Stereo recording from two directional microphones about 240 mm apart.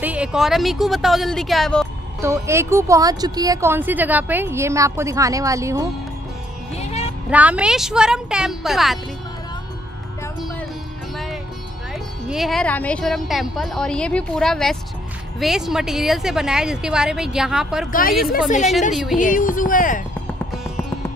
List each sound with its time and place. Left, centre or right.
0.0 s speech: centre
2.2 s speech: centre
6.7 s music: left
7.2 s speech: centre
11.9 s speech: centre
19.1 s speech: left